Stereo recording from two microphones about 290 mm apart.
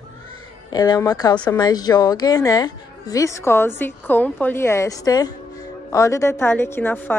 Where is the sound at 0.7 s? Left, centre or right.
Centre.